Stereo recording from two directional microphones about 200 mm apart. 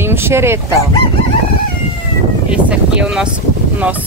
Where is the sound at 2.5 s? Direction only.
5° right (ahead or behind).